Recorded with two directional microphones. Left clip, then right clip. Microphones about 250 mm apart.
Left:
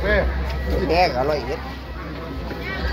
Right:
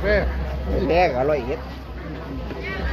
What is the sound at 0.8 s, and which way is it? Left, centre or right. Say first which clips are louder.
Speech: even; right.